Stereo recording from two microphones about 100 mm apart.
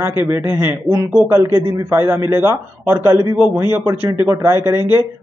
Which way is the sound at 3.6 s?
20° right (ahead or behind).